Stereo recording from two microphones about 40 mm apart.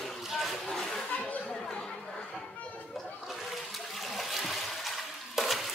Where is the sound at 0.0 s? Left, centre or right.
Centre.